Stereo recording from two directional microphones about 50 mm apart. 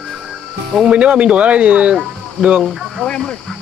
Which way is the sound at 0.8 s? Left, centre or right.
Right.